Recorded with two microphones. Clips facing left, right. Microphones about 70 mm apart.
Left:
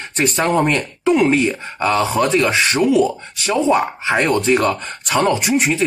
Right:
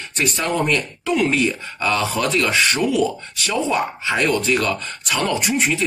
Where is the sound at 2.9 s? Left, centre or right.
Left.